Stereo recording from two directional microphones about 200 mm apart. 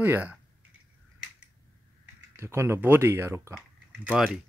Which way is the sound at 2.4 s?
15° right (ahead or behind).